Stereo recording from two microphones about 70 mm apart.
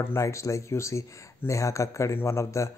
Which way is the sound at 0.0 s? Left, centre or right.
Left.